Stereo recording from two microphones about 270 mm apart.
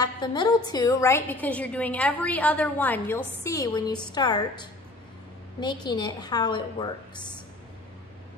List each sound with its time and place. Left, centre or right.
0.0 s a woman's voice: centre